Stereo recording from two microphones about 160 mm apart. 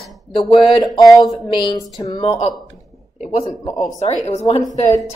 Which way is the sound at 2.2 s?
40° left (ahead or behind).